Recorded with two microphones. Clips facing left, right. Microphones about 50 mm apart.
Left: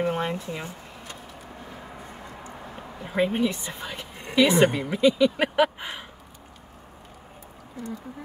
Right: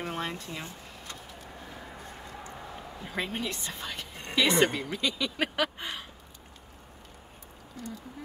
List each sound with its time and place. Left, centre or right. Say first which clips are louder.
0.0 s speech: left 8 dB; centre
3.0 s a woman's voice: left 10 dB; centre